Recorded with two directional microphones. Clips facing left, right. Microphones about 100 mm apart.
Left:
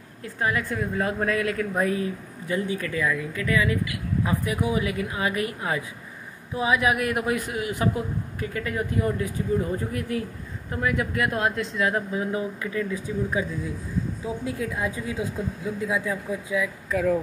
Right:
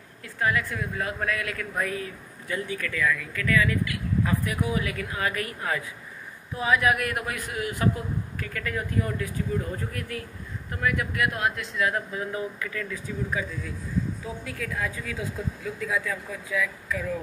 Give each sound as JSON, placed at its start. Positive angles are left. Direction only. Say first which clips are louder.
{"t": 0.2, "sound": "a woman's voice", "louder": "even", "side_deg": 30}
{"t": 16.9, "sound": "a woman's voice", "louder": "left 9 dB", "side_deg": 55}